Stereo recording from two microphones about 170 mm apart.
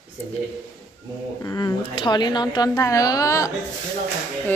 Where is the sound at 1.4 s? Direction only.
20° left (ahead or behind).